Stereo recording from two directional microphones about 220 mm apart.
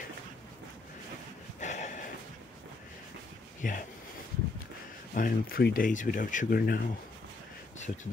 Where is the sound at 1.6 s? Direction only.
35° left (ahead or behind).